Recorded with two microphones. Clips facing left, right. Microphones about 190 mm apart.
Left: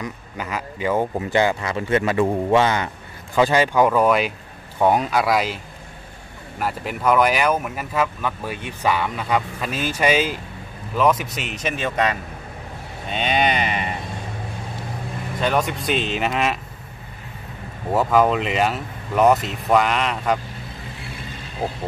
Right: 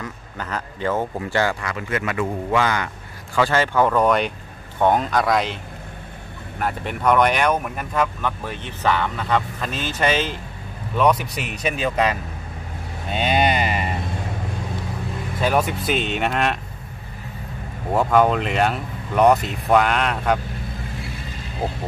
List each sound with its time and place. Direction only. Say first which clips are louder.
0.0 s speech: left 2 dB; 10° left (ahead or behind)
6.6 s speech: even; 5° left (ahead or behind)
13.1 s a sound: right 1 dB; 5° right (ahead or behind)
15.4 s speech: right 1 dB; 5° right (ahead or behind)
17.9 s speech: even; centre (ahead or behind)